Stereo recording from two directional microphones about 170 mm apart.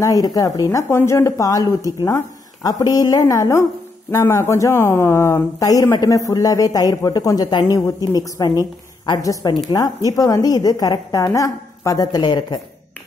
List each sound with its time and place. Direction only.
0.0 s speech: 20° left (ahead or behind)